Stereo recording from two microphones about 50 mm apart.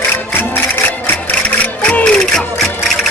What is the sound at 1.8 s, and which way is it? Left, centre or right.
Music, left.